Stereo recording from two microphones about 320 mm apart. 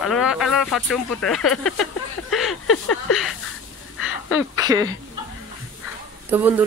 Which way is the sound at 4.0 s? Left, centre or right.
Left.